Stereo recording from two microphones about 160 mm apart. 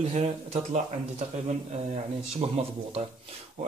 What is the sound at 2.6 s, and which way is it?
Speech, 35° right (ahead or behind).